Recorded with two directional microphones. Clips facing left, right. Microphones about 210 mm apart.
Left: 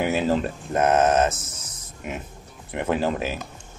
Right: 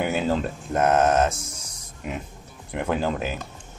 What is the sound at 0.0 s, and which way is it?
Speech, centre (ahead or behind).